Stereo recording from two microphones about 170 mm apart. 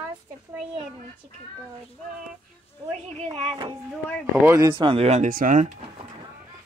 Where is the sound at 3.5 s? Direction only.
30° right (ahead or behind).